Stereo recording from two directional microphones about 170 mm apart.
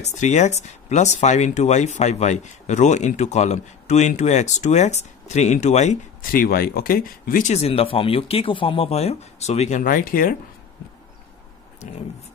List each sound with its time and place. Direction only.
0.0 s speech: 45° left (ahead or behind)
6.4 s speech: 60° left (ahead or behind)